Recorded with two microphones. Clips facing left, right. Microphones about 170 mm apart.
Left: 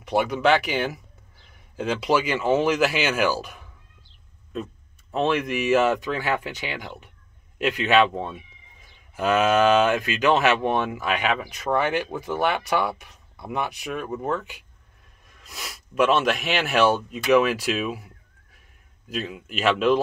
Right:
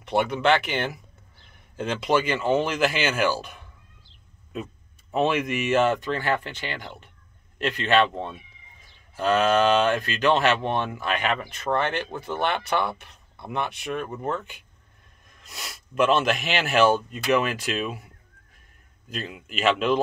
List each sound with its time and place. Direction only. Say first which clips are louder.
0.1 s speech: left 1 dB; 5° left (ahead or behind)
5.1 s speech: even; 5° right (ahead or behind)